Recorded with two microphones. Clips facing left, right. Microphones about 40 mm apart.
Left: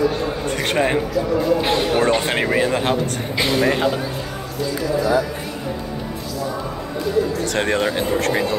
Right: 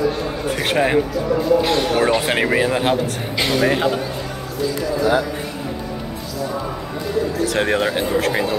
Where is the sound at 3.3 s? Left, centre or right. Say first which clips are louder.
Even; right.